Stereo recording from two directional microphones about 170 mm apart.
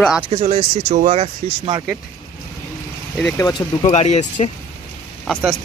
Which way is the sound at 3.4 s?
25° left (ahead or behind).